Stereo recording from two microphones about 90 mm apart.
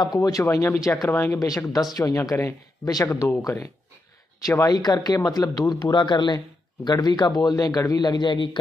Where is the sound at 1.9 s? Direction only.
40° left (ahead or behind).